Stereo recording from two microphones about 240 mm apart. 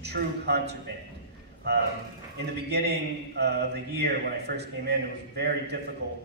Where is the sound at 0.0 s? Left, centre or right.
Right.